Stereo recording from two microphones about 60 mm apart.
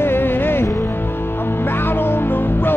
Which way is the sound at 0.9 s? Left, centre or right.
Left.